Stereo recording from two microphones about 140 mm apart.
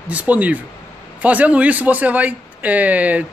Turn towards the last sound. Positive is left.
turn(degrees=-10)  # may be behind; listen again after turning